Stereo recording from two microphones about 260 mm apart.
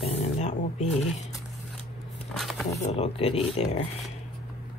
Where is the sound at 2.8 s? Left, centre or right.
Left.